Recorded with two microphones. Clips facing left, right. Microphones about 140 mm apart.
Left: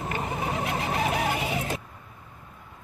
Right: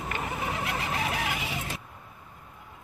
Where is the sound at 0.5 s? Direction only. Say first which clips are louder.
Left 3 dB; 35° left (ahead or behind); by 1.8 s 50° left (ahead or behind).